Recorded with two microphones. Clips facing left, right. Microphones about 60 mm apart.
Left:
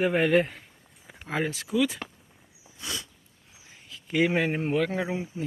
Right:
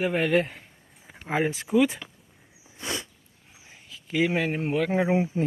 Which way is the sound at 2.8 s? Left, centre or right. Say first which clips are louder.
Right 4 dB; right.